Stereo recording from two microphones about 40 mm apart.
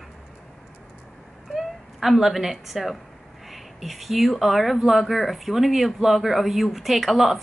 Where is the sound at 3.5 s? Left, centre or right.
Centre.